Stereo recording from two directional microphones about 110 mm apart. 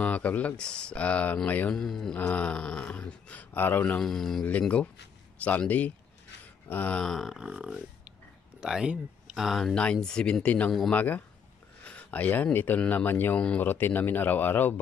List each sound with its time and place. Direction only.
0.0 s speech: 15° left (ahead or behind)
4.0 s speech: 5° left (ahead or behind)